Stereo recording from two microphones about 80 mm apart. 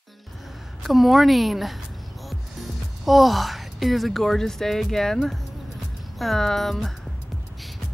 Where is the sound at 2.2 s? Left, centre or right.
Centre.